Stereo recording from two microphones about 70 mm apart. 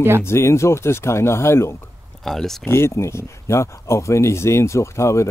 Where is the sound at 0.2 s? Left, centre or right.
Left.